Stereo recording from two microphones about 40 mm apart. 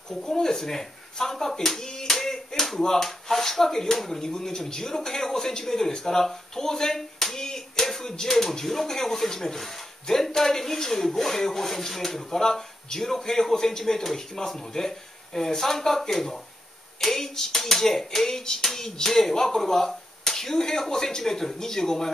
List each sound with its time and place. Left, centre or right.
0.2 s speech: centre